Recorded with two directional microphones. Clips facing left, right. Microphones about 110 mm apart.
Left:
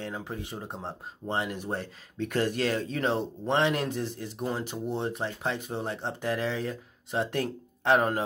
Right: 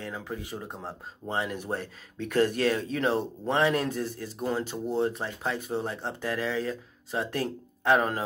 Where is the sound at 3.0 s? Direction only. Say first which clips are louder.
Right 1 dB; 20° left (ahead or behind).